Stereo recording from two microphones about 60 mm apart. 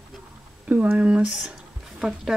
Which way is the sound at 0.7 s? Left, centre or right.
Right.